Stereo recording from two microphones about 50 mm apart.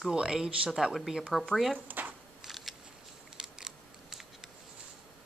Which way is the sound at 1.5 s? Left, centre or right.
Centre.